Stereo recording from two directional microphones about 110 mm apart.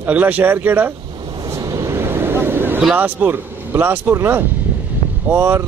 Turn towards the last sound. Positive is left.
turn(degrees=-20)  # may be behind; listen again after turning